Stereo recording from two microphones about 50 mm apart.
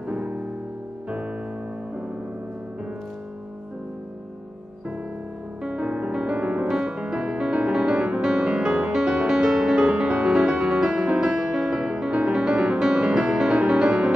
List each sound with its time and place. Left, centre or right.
0.1 s music: right
5.6 s music: right
6.7 s music: centre